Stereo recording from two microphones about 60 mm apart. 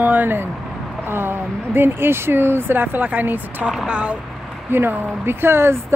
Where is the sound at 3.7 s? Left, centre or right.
Centre.